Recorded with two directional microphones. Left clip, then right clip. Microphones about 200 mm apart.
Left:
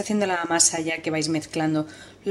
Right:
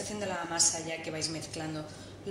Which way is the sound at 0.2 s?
35° left (ahead or behind).